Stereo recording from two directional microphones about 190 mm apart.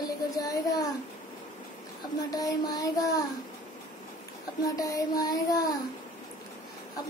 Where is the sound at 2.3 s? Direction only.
20° left (ahead or behind).